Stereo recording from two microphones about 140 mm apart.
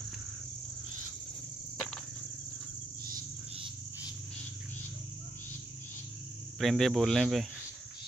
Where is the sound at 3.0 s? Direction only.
90° right.